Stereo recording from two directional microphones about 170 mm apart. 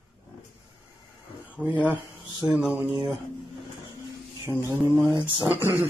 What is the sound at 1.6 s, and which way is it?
Speech, centre (ahead or behind).